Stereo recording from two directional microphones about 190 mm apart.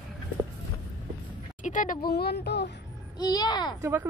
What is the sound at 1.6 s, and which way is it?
Speech, 45° left (ahead or behind).